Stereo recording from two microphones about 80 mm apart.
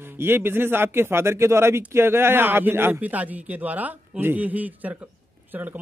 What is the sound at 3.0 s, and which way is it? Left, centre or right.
Speech, centre.